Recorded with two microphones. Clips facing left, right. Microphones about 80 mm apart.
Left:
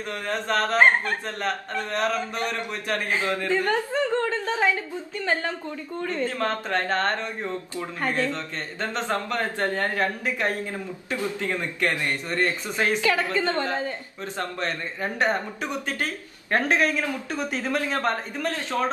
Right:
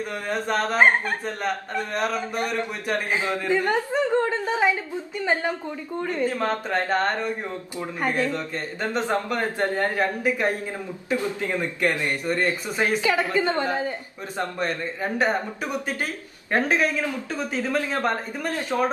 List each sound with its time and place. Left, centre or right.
0.1 s a woman's voice: centre